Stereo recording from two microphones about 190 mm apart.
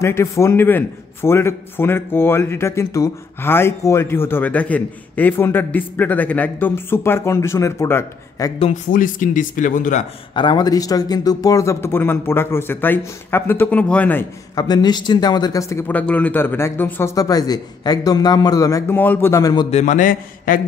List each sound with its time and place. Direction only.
0.0 s speech: 15° left (ahead or behind)
8.9 s speech: 45° left (ahead or behind)
10.3 s speech: 25° left (ahead or behind)
19.7 s speech: 40° left (ahead or behind)